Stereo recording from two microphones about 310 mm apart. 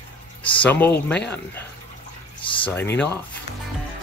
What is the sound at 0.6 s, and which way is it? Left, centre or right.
Speech, centre.